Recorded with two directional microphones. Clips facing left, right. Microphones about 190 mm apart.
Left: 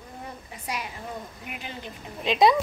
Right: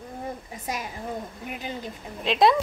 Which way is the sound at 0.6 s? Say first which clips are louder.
Right 2 dB; 45° right (ahead or behind).